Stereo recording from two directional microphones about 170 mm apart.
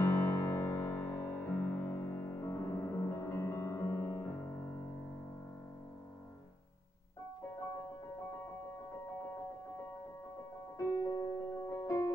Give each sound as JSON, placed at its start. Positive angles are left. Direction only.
{"t": 0.0, "sound": "music", "side_deg": 10}
{"t": 10.8, "sound": "music", "side_deg": 20}